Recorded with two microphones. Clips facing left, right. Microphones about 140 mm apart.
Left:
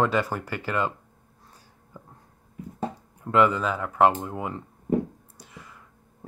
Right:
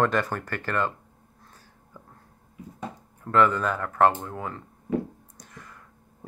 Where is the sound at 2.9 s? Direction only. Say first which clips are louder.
Even; 10° left (ahead or behind).